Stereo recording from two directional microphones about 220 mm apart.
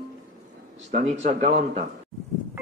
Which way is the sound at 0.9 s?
35° right (ahead or behind).